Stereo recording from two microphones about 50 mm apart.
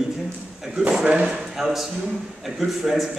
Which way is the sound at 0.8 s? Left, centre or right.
Right.